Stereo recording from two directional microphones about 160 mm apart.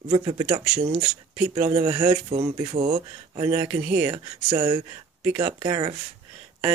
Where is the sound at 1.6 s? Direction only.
40° right (ahead or behind).